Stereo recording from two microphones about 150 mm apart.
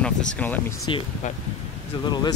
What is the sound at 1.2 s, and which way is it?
Speech, 55° left (ahead or behind).